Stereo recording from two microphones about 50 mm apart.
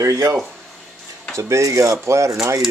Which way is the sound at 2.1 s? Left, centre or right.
Right.